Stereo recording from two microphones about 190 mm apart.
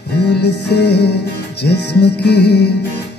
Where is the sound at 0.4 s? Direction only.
60° left (ahead or behind).